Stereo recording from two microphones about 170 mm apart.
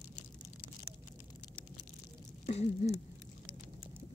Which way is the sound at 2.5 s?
40° left (ahead or behind).